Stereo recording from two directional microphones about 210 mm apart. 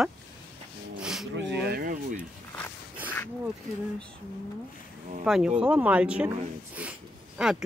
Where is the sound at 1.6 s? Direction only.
45° right (ahead or behind).